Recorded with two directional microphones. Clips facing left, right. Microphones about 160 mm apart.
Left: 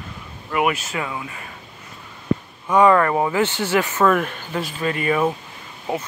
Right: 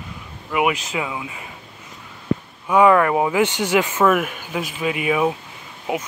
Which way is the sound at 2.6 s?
10° right (ahead or behind).